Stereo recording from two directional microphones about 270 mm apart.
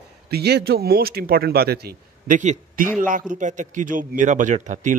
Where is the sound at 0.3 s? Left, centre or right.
Right.